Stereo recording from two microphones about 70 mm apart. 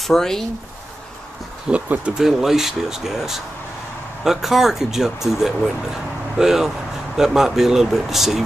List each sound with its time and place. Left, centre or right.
0.0 s speech: centre
1.7 s speech: centre
2.2 s speech: centre